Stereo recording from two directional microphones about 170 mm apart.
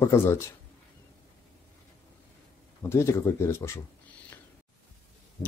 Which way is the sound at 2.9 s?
15° left (ahead or behind).